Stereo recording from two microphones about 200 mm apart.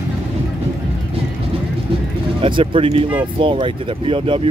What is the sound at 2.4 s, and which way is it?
Speech, 25° right (ahead or behind).